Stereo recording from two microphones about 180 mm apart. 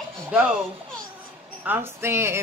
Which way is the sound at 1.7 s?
15° right (ahead or behind).